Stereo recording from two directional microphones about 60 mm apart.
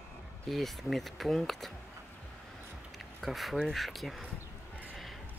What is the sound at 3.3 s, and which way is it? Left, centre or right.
Speech, centre.